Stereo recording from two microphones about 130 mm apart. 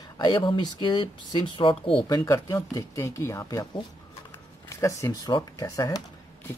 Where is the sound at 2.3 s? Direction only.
25° left (ahead or behind).